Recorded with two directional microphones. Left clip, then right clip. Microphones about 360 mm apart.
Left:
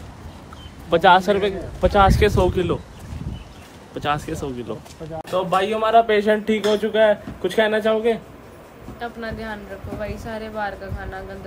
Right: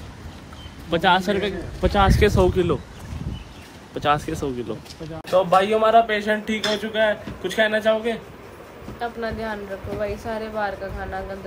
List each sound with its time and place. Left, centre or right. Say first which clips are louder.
0.8 s a man's voice: left 5 dB; centre
3.9 s a man's voice: right 2 dB; centre
6.0 s speech: left 5 dB; centre
9.0 s speech: right 3 dB; centre